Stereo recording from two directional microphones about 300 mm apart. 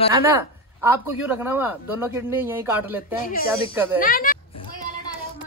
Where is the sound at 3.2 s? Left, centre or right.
Left.